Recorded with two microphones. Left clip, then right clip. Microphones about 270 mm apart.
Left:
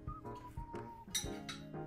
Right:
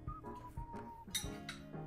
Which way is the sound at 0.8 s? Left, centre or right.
Centre.